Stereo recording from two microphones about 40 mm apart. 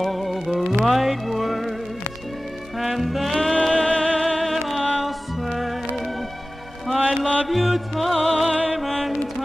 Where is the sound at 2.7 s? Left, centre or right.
Centre.